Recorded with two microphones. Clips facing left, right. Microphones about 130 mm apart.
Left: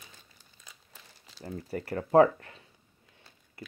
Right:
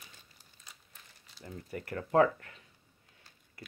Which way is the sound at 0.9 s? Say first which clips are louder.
Left 4 dB; 90° left.